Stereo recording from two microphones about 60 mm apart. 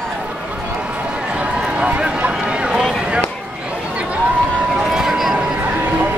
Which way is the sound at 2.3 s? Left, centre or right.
Centre.